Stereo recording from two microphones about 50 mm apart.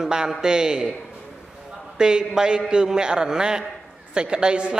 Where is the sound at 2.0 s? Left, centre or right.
Centre.